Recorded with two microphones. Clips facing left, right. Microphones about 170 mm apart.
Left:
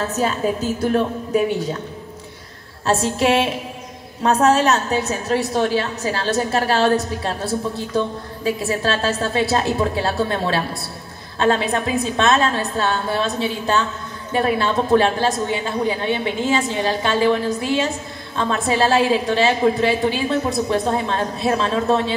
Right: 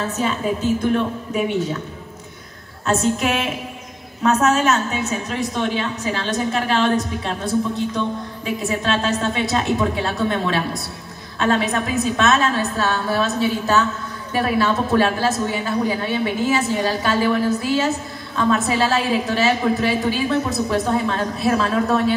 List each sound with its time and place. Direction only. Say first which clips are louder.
0.0 s a woman's voice: left 2 dB; 40° left (ahead or behind)
2.9 s a woman's voice: left 2 dB; 35° left (ahead or behind)
8.5 s a woman's voice: left 2 dB; 35° left (ahead or behind)